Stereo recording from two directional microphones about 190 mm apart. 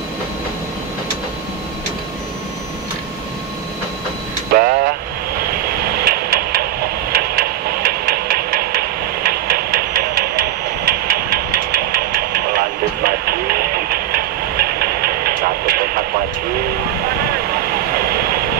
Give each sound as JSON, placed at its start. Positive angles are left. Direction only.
{"t": 4.6, "sound": "vehicle", "side_deg": -50}
{"t": 5.4, "sound": "a sound", "side_deg": -55}
{"t": 18.0, "sound": "vehicle", "side_deg": -55}